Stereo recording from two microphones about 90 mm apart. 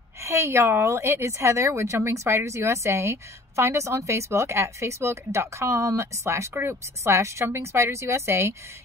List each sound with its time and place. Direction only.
0.2 s speech: 30° right (ahead or behind)